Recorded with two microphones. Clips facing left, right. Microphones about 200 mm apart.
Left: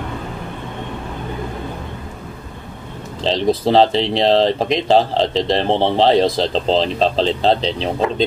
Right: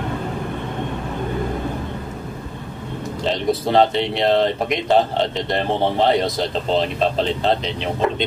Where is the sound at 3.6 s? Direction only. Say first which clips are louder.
Left 2 dB; 30° left (ahead or behind).